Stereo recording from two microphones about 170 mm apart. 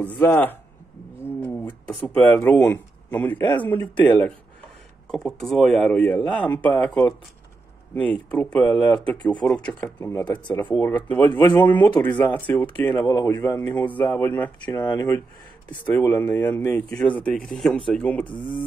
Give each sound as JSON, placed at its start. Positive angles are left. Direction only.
{"t": 0.0, "sound": "speech", "side_deg": 10}
{"t": 1.2, "sound": "a sound", "side_deg": 10}
{"t": 3.5, "sound": "speech", "side_deg": 10}
{"t": 10.2, "sound": "speech", "side_deg": 25}
{"t": 10.6, "sound": "speech", "side_deg": 10}
{"t": 12.9, "sound": "speech", "side_deg": 20}
{"t": 13.7, "sound": "speech", "side_deg": 10}
{"t": 14.8, "sound": "speech", "side_deg": 20}
{"t": 15.7, "sound": "speech", "side_deg": 10}